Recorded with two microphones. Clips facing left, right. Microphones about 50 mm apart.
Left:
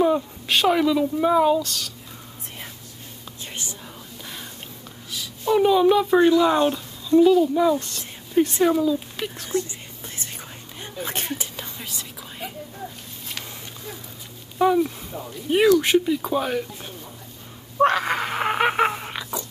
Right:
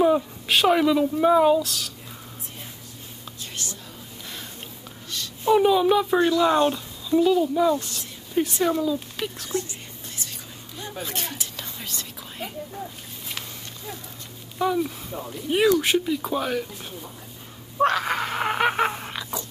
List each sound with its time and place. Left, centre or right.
0.0 s a woman's voice: centre
5.4 s a woman's voice: centre
10.8 s a sound: left
11.5 s whispering: centre
14.6 s a woman's voice: centre
17.7 s wheeze: centre